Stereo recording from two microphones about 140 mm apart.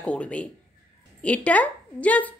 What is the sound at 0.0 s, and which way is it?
A woman's voice, 10° left (ahead or behind).